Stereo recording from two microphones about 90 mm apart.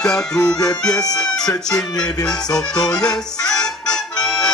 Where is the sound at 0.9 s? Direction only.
45° left (ahead or behind).